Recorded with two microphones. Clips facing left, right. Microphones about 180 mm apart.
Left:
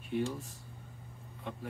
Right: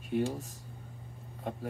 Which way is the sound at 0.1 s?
40° right (ahead or behind).